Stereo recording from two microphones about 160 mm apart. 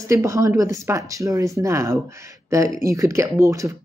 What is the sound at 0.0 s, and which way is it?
Speech, 20° right (ahead or behind).